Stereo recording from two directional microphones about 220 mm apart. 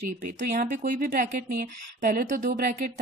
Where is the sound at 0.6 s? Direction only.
40° right (ahead or behind).